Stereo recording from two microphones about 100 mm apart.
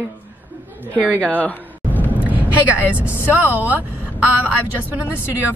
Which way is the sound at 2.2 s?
15° right (ahead or behind).